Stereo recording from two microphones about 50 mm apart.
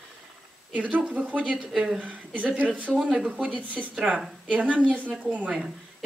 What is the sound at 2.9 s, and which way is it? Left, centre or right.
Speech, centre.